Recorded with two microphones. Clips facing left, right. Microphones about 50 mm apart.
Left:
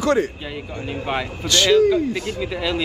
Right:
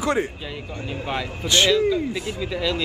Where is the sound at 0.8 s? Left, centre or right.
Centre.